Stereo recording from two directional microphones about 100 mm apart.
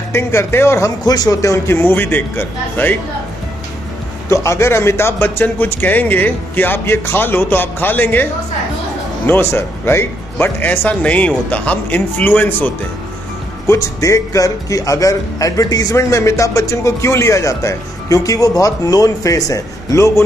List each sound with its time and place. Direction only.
0.1 s speech: 30° left (ahead or behind)
4.3 s speech: 30° left (ahead or behind)
13.7 s speech: 30° left (ahead or behind)